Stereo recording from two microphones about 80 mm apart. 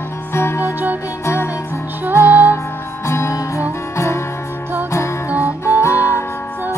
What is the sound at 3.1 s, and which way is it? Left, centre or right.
Music, left.